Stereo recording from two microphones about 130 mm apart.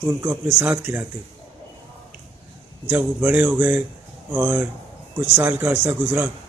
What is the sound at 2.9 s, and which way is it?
A man's voice, 15° right (ahead or behind).